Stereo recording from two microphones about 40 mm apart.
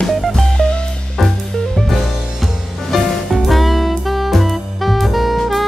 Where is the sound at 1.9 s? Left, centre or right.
Centre.